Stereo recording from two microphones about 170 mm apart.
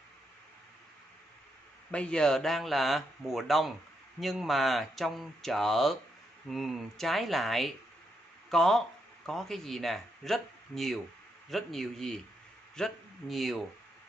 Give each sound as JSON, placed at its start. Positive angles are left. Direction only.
{"t": 1.9, "sound": "a man's voice", "side_deg": 5}